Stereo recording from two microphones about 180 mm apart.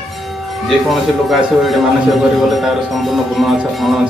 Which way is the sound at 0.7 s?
Centre (ahead or behind).